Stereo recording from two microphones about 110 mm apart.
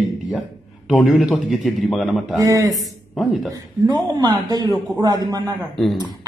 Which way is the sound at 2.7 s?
Centre (ahead or behind).